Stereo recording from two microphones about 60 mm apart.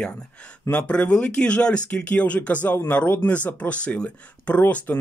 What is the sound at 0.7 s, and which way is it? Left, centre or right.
Speech, left.